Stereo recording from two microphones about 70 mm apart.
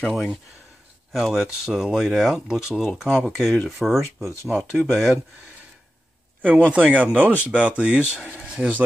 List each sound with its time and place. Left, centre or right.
0.1 s speech: centre
6.4 s a man's voice: right